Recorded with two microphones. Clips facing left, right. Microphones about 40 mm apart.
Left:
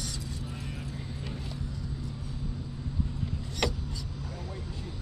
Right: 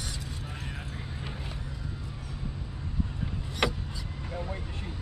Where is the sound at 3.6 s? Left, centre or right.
Right.